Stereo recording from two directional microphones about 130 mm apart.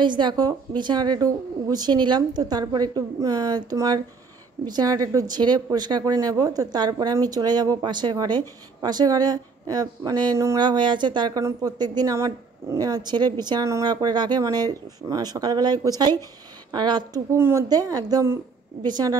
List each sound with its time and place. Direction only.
0.0 s a woman's voice: 35° right (ahead or behind)
17.4 s a woman's voice: 20° right (ahead or behind)
17.6 s a woman's voice: 30° right (ahead or behind)